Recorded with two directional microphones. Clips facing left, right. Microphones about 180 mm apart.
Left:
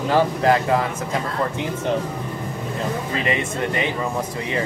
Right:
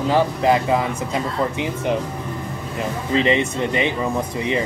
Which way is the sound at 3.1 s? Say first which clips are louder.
Right 10 dB; 25° right (ahead or behind).